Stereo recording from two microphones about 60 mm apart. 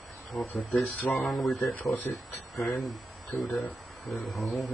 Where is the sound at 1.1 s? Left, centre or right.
Left.